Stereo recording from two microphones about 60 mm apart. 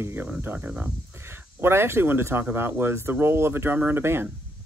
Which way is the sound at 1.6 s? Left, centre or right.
Right.